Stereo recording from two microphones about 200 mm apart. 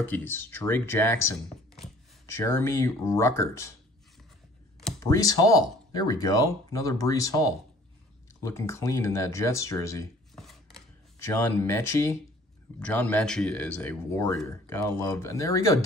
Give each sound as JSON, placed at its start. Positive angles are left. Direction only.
{"t": 0.0, "sound": "speech", "side_deg": 10}
{"t": 5.0, "sound": "speech", "side_deg": 15}
{"t": 10.3, "sound": "chopping", "side_deg": 0}
{"t": 11.1, "sound": "speech", "side_deg": 10}